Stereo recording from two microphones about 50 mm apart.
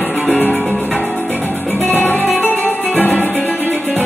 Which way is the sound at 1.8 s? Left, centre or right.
Left.